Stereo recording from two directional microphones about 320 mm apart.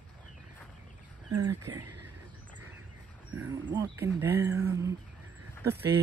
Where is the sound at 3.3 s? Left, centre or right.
Centre.